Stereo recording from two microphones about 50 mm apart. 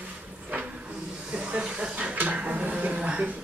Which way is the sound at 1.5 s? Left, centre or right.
Right.